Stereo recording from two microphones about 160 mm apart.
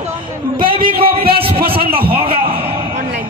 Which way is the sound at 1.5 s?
35° right (ahead or behind).